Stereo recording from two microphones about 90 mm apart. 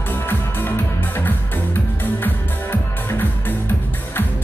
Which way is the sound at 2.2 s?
20° left (ahead or behind).